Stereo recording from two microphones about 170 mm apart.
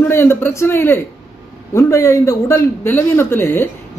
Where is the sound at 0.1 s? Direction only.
15° left (ahead or behind).